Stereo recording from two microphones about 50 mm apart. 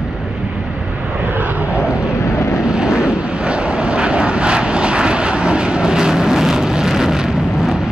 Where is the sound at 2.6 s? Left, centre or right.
Centre.